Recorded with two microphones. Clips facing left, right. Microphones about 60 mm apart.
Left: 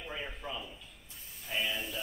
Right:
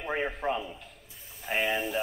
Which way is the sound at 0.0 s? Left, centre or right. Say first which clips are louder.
Right 11 dB; right.